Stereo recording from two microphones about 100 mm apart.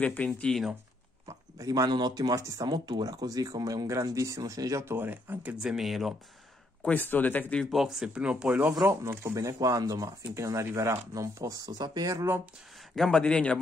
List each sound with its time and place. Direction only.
0.0 s speech: 15° left (ahead or behind)
1.6 s speech: 35° right (ahead or behind)
4.9 s speech: 20° right (ahead or behind); by 6.1 s centre (ahead or behind)
6.8 s speech: 20° left (ahead or behind)
7.7 s speech: 5° right (ahead or behind)
8.8 s speech: 25° right (ahead or behind)
12.9 s speech: 5° left (ahead or behind)